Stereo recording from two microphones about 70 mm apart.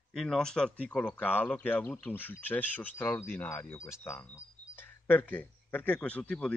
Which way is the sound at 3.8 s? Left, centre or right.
Left.